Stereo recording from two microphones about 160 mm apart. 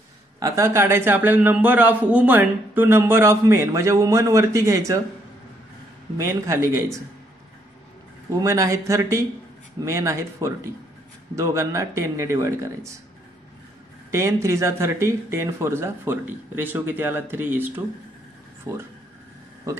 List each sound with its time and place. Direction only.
0.4 s a man's voice: 20° right (ahead or behind)
6.1 s a man's voice: 20° right (ahead or behind)
8.3 s speech: 20° right (ahead or behind)
14.1 s a man's voice: 20° right (ahead or behind)